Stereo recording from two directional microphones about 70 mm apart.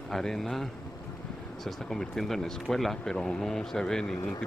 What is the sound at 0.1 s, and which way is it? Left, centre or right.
Speech, centre.